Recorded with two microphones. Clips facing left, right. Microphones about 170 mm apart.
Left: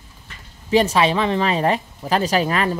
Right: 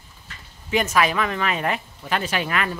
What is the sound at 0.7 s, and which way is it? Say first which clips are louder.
Speech: left 4 dB; 30° left (ahead or behind).